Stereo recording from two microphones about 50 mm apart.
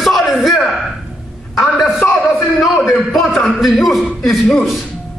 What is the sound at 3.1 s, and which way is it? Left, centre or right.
A man's voice, centre.